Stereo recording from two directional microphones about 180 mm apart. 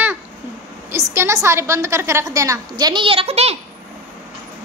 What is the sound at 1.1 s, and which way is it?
A woman's voice, 15° right (ahead or behind).